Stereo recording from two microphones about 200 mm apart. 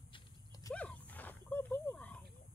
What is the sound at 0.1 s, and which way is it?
Horse, 20° left (ahead or behind).